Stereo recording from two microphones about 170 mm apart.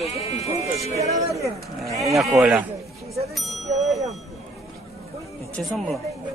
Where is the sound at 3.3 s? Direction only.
Centre (ahead or behind).